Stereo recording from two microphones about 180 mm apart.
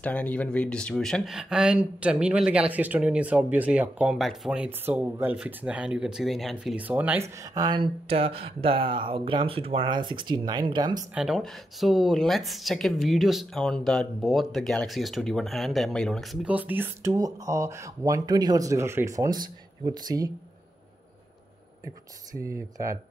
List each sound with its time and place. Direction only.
0.0 s speech: 10° left (ahead or behind); by 7.2 s 10° right (ahead or behind)
7.3 s speech: 20° right (ahead or behind)
11.1 s speech: centre (ahead or behind); by 20.2 s 20° right (ahead or behind)
22.3 s speech: 15° right (ahead or behind)